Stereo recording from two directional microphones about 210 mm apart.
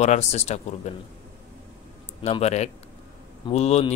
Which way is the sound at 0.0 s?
30° left (ahead or behind).